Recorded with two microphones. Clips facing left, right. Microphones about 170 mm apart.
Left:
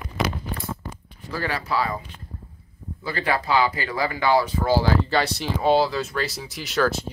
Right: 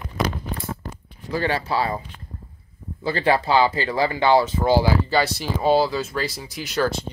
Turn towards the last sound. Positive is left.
turn(degrees=0)  # may be behind; listen again after turning